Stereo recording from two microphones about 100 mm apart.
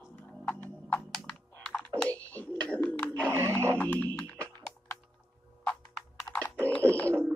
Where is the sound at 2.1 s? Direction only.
15° left (ahead or behind).